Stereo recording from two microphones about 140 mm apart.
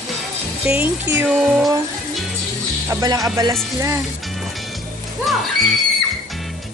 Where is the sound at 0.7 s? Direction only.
15° right (ahead or behind).